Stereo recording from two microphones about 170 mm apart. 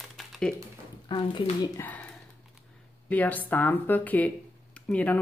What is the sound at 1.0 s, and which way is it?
Speech, 25° left (ahead or behind).